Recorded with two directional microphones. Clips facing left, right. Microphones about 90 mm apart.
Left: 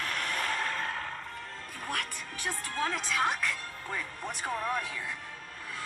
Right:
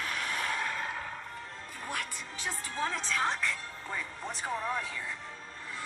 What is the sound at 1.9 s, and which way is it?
Music, 60° left (ahead or behind).